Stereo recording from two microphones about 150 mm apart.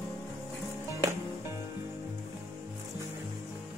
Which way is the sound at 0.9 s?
20° right (ahead or behind).